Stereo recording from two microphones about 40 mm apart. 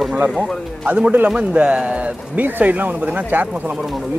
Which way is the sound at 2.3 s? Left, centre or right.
Right.